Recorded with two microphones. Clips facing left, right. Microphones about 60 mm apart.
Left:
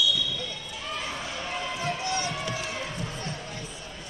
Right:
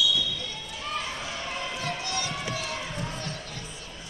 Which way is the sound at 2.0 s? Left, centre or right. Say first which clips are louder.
Left 3 dB; left.